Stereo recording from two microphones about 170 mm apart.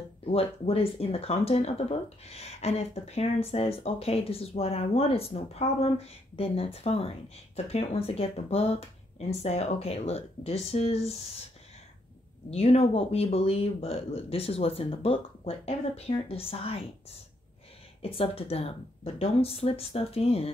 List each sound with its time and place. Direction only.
0.2 s speech: 35° left (ahead or behind)
12.4 s speech: 35° left (ahead or behind)
18.0 s speech: 35° left (ahead or behind)